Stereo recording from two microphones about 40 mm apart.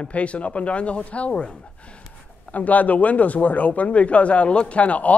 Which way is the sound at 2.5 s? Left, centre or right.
Left.